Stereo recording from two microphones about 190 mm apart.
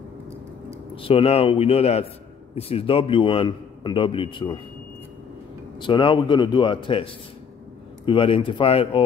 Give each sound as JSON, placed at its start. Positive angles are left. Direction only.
{"t": 1.0, "sound": "a man's voice", "side_deg": 30}
{"t": 5.8, "sound": "a man's voice", "side_deg": 25}